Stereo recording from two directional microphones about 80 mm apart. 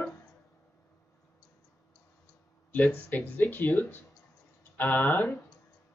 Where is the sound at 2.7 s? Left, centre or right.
Left.